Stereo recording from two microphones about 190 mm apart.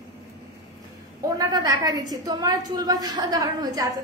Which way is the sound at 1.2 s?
20° right (ahead or behind).